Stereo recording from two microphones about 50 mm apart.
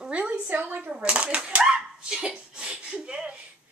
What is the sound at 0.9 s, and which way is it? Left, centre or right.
Speech, right.